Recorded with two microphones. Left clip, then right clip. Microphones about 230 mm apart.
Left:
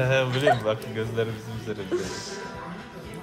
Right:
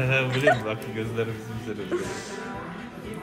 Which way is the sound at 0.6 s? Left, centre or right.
Left.